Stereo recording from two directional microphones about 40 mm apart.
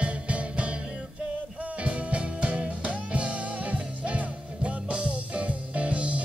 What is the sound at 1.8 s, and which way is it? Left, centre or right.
Music, right.